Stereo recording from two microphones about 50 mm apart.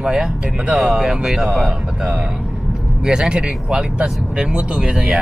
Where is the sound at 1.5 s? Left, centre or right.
Right.